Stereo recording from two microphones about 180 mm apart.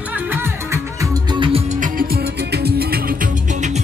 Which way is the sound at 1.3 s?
25° right (ahead or behind).